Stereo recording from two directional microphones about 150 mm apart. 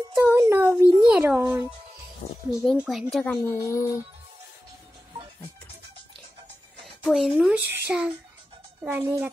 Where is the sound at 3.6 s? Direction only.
20° left (ahead or behind).